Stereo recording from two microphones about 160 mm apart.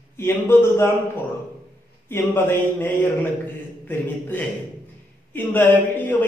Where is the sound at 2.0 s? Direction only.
15° left (ahead or behind).